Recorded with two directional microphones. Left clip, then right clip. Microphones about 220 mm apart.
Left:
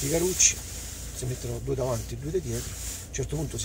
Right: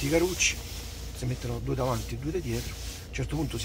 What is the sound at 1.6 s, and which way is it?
Speech, 10° left (ahead or behind).